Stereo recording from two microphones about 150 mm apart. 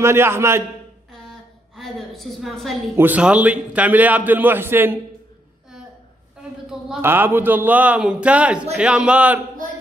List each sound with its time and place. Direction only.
0.0 s a man's voice: 15° right (ahead or behind)
1.1 s a sound: 5° left (ahead or behind)
3.0 s a man's voice: 10° right (ahead or behind)
7.0 s a man's voice: 15° right (ahead or behind)